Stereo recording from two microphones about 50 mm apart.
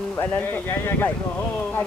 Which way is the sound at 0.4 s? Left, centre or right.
Left.